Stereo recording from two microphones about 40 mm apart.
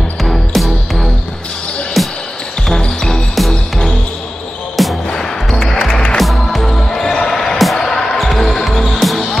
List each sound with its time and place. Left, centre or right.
0.2 s music: centre
2.8 s music: centre
3.3 s music: centre
6.1 s basketball bounce: centre